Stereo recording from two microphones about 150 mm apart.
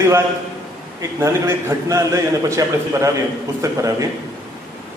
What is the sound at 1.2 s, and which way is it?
A man's voice, 20° right (ahead or behind).